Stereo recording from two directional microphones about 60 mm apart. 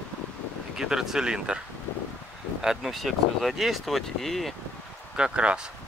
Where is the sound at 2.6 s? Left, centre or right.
Centre.